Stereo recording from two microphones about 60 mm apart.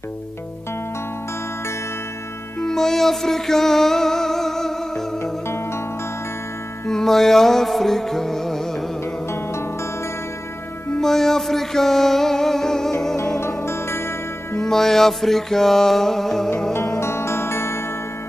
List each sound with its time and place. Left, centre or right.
2.6 s music: centre
6.9 s music: centre
11.0 s music: centre
13.4 s music: left
14.6 s music: centre
17.0 s music: left